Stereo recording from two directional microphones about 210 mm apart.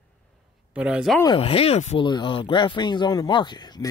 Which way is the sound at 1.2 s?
25° left (ahead or behind).